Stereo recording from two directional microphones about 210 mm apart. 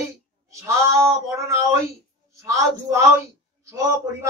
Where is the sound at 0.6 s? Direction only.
15° right (ahead or behind).